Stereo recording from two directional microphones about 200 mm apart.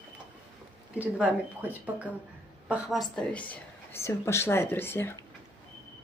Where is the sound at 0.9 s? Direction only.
5° right (ahead or behind); by 5.1 s 10° left (ahead or behind).